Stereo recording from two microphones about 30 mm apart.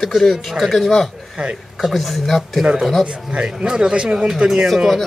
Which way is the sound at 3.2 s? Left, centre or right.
Right.